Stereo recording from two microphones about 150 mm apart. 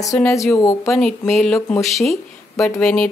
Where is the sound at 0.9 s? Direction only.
5° left (ahead or behind).